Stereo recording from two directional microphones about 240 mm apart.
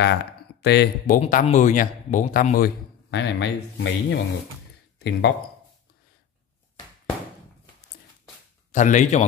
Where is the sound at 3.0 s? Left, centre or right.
Left.